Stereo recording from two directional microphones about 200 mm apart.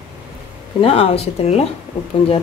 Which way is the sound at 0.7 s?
30° left (ahead or behind).